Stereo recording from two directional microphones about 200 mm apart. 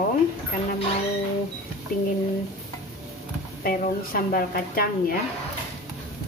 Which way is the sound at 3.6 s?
45° left (ahead or behind).